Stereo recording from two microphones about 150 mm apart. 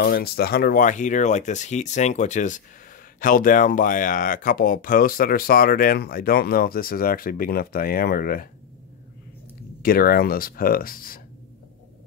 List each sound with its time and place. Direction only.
0.0 s speech: 90° left; by 8.5 s 70° left (ahead or behind)
9.8 s speech: 80° left